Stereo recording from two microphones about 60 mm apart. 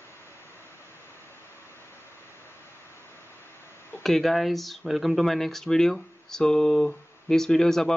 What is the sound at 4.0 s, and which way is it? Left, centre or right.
Speech, centre.